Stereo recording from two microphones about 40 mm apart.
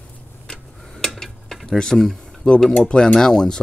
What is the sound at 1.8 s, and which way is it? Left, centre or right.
Speech, centre.